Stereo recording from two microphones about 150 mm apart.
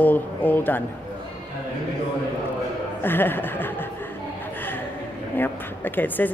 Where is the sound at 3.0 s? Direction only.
15° left (ahead or behind).